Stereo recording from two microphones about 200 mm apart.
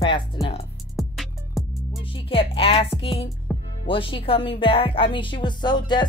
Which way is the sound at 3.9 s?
25° left (ahead or behind).